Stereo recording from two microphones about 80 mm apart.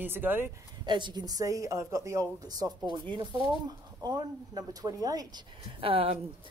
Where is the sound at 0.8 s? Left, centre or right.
Right.